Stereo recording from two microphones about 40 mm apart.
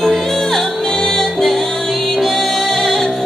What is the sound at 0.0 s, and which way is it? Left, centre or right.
Music, centre.